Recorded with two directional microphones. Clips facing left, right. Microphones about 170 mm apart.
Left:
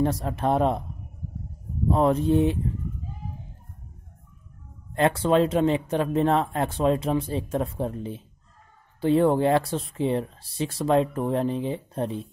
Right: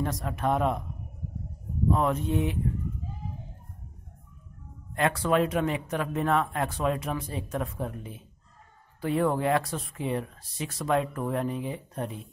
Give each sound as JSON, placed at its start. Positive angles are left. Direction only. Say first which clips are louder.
{"t": 0.0, "sound": "speech", "louder": "left 5 dB", "side_deg": 30}
{"t": 1.9, "sound": "speech", "louder": "left 5 dB", "side_deg": 35}
{"t": 4.9, "sound": "speech", "louder": "left 4 dB", "side_deg": 30}